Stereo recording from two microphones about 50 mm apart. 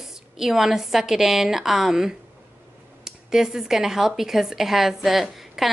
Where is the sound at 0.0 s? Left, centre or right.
Centre.